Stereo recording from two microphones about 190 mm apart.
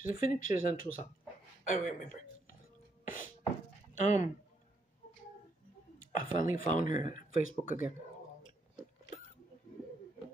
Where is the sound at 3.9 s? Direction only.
40° left (ahead or behind).